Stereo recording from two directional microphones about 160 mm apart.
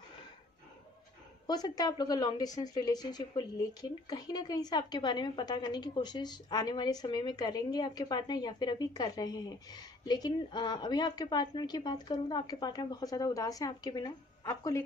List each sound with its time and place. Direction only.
1.5 s a woman's voice: 25° left (ahead or behind)